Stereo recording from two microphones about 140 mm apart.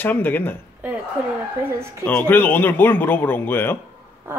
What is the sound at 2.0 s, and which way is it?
Speech, 10° left (ahead or behind).